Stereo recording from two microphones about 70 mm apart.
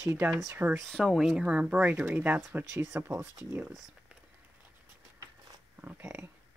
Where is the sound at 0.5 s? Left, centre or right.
Right.